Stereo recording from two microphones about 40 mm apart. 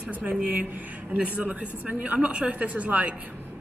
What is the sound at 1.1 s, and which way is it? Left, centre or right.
A woman's voice, right.